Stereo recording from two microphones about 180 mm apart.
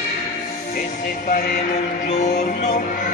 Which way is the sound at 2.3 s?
55° left (ahead or behind).